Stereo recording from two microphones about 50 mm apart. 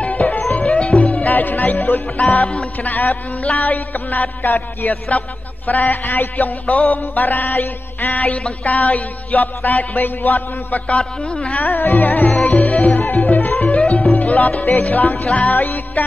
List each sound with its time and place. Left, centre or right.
0.0 s music: left
1.2 s music: left
2.8 s mantra: left
12.4 s music: left
13.6 s music: centre
14.1 s music: left